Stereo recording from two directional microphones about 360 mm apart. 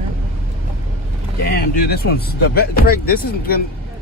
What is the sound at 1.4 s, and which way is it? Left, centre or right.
Speech, left.